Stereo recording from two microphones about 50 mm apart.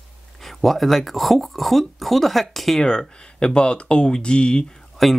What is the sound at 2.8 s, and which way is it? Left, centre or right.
Speech, centre.